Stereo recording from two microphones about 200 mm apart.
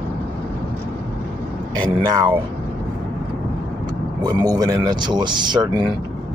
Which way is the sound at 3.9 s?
20° right (ahead or behind).